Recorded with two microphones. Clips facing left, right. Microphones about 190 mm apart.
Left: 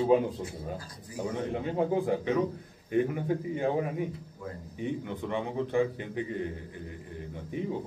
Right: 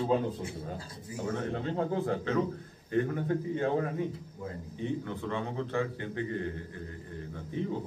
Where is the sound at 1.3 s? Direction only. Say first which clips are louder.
Left 1 dB; 15° left (ahead or behind).